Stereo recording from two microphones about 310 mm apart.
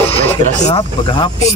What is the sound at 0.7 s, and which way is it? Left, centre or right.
Speech, centre.